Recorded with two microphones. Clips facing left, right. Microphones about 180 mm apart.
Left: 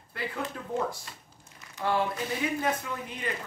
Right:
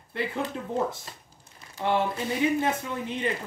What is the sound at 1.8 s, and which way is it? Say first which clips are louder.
Speech: right 2 dB; 25° right (ahead or behind).